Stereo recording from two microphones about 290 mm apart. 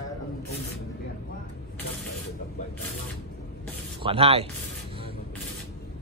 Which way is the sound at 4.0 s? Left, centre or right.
Centre.